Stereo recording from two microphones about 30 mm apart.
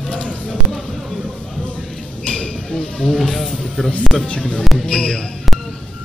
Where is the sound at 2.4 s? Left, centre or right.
Centre.